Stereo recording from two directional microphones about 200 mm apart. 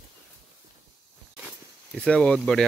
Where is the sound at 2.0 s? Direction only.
5° left (ahead or behind).